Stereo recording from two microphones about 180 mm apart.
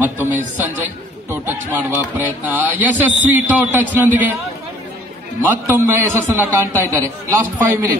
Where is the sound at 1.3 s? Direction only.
10° right (ahead or behind).